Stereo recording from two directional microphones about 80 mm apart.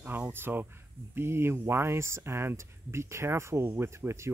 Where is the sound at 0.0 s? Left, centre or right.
Right.